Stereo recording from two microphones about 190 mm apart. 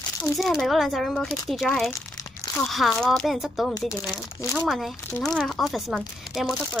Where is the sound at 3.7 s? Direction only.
20° left (ahead or behind).